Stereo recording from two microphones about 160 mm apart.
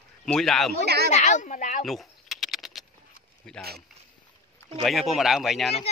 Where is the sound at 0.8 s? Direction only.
80° right.